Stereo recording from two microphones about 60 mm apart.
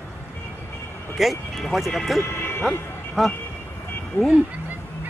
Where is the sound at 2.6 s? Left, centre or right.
Centre.